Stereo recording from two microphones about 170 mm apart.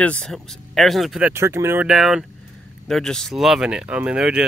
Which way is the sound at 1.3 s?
15° right (ahead or behind).